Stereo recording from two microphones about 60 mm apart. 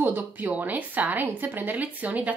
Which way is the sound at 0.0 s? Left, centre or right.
Right.